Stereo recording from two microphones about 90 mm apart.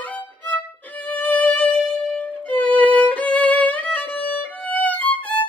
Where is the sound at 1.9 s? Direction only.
15° left (ahead or behind).